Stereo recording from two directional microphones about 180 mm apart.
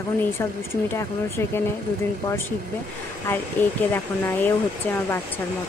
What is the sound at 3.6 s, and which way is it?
Speech, 10° left (ahead or behind).